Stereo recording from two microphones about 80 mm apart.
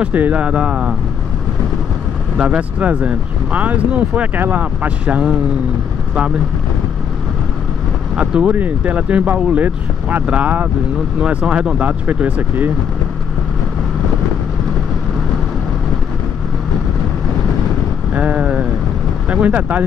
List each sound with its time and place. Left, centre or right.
0.0 s speech: centre
2.3 s speech: centre
8.2 s speech: centre
18.1 s vehicle: centre
19.2 s speech: centre